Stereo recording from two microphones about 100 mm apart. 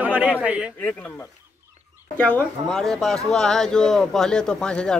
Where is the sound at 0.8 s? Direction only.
20° left (ahead or behind).